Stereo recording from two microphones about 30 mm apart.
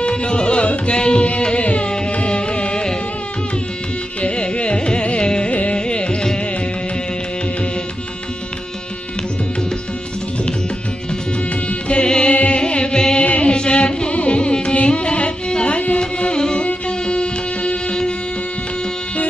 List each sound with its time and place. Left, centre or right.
0.0 s tabla: left
0.9 s music: left
1.9 s carnatic music: left
4.2 s carnatic music: left
5.5 s carnatic music: left
5.8 s music: left
11.9 s music: left
16.0 s music: left